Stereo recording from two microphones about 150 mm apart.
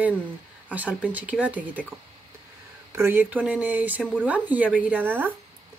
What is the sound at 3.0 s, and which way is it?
Speech, 15° right (ahead or behind).